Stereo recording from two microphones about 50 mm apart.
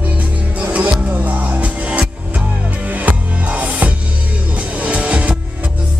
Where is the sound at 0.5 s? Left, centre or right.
Right.